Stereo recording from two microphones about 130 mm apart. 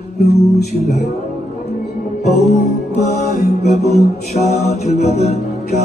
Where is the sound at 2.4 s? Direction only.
55° left (ahead or behind).